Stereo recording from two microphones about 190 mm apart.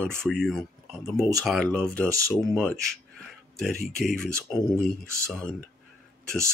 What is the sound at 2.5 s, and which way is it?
Speech, 5° left (ahead or behind).